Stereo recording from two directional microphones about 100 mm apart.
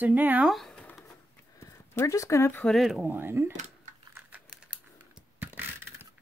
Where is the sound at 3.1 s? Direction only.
20° right (ahead or behind).